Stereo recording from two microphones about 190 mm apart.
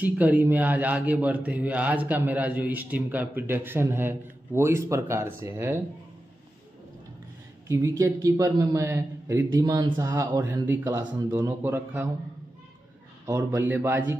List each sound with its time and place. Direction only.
0.0 s speech: 10° right (ahead or behind)
7.6 s speech: 15° right (ahead or behind)
13.3 s speech: 10° right (ahead or behind)